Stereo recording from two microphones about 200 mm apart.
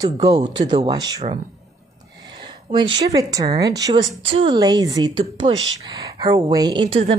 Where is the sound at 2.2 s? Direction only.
25° right (ahead or behind).